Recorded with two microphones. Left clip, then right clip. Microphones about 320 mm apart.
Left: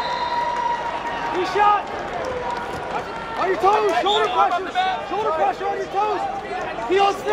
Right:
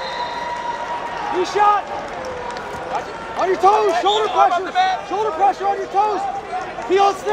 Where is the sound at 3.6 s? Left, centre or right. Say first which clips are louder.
Right 3 dB; right.